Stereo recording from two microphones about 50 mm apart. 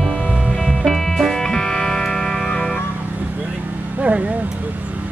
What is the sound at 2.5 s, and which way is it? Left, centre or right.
Music, left.